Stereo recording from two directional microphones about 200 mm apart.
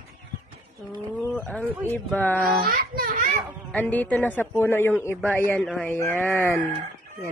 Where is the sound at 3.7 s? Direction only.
10° left (ahead or behind).